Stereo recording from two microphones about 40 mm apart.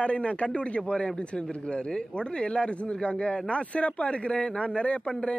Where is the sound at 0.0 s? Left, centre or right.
Left.